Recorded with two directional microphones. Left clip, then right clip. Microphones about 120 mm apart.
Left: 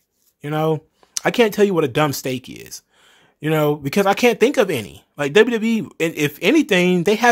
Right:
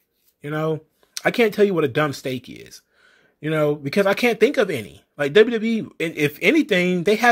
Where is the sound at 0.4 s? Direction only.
30° left (ahead or behind).